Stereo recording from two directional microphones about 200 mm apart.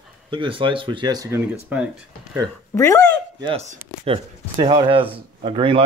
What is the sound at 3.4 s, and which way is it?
Speech, 35° right (ahead or behind).